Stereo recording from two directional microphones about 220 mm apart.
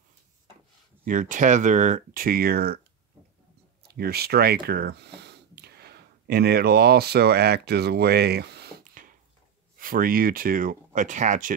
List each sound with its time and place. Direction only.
1.0 s speech: 35° right (ahead or behind)
3.8 s speech: 45° right (ahead or behind)